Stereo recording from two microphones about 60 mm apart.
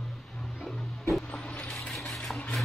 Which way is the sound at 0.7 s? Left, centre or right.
Centre.